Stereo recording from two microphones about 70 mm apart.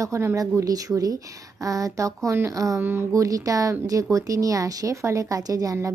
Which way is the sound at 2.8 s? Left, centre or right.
Right.